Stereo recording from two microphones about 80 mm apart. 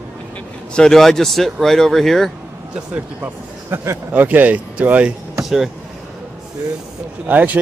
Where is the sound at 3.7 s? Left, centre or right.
Right.